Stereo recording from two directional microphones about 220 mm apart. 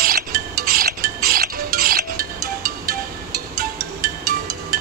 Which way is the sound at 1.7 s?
45° right (ahead or behind).